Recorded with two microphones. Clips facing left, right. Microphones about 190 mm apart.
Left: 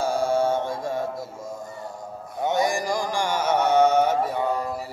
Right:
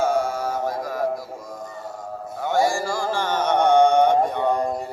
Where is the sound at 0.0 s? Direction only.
30° left (ahead or behind).